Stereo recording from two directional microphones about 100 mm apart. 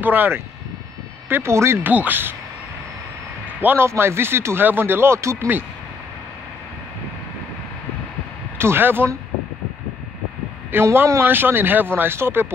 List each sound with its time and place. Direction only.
0.0 s speech: 20° right (ahead or behind)
3.6 s speech: 25° right (ahead or behind)
8.5 s speech: 25° right (ahead or behind)
10.7 s speech: 25° right (ahead or behind)